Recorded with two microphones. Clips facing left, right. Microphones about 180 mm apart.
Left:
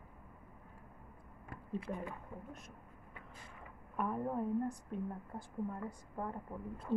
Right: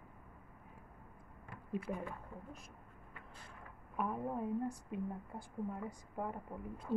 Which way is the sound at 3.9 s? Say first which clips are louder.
Left 2 dB; 5° right (ahead or behind).